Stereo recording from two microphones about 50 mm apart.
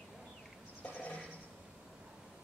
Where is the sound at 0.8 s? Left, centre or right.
Left.